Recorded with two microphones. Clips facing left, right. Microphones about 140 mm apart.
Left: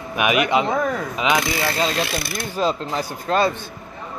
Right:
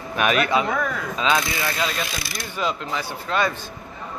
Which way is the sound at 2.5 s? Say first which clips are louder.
Left 4 dB; 40° left (ahead or behind).